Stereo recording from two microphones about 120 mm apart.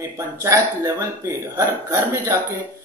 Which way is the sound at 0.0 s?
25° right (ahead or behind).